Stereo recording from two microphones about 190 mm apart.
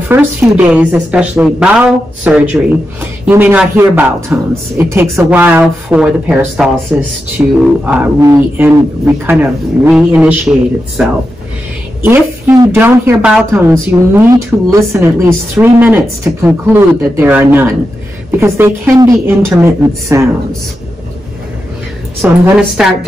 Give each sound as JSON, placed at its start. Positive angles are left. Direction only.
{"t": 0.1, "sound": "a man's voice", "side_deg": -10}
{"t": 12.0, "sound": "a man's voice", "side_deg": -10}
{"t": 22.2, "sound": "a man's voice", "side_deg": -10}